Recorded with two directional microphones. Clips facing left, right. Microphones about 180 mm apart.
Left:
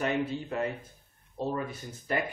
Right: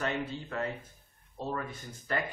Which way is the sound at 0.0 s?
15° left (ahead or behind).